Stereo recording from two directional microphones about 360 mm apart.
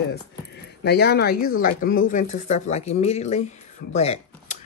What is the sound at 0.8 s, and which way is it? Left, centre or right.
Speech, left.